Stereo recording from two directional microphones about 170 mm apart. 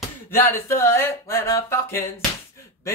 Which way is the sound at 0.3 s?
15° left (ahead or behind).